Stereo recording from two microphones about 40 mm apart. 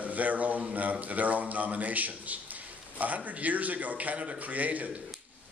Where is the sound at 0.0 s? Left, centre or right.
Right.